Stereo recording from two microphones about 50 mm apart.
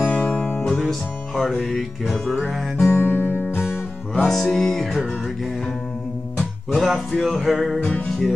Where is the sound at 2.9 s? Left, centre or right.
Left.